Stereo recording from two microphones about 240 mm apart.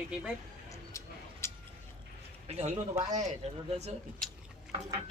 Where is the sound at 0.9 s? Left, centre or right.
Centre.